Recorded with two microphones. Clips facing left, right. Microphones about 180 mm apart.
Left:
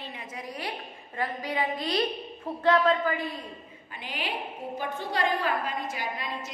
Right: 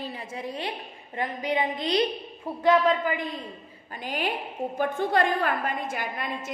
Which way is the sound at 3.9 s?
45° right (ahead or behind).